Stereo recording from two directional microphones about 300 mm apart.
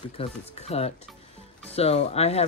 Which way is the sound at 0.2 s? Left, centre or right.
Left.